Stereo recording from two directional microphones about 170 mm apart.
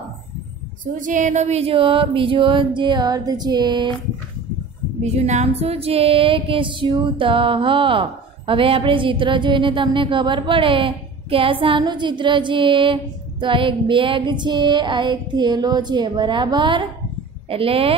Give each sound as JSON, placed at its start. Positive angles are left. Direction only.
{"t": 0.9, "sound": "female singing", "side_deg": -50}
{"t": 5.0, "sound": "female singing", "side_deg": -40}
{"t": 17.5, "sound": "speech", "side_deg": -35}